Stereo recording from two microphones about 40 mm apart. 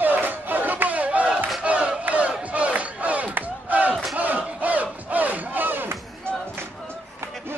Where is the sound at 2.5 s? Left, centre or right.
Right.